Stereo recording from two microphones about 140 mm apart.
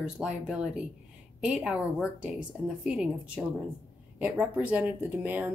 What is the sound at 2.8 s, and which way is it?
Speech, 5° right (ahead or behind).